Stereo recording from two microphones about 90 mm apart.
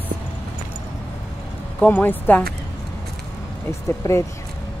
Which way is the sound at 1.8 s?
20° left (ahead or behind).